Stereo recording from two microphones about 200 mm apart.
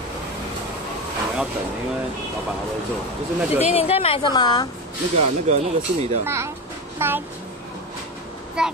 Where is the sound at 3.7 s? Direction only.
30° left (ahead or behind).